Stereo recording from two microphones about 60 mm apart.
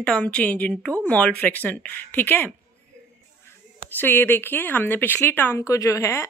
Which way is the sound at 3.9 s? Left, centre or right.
Left.